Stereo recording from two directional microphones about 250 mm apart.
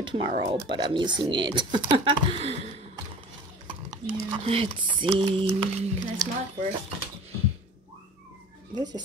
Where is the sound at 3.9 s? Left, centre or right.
Centre.